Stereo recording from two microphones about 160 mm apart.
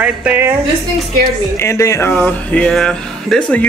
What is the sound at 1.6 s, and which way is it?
Speech, 20° left (ahead or behind).